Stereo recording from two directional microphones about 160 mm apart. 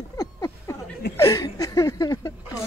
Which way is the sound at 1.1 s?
20° left (ahead or behind).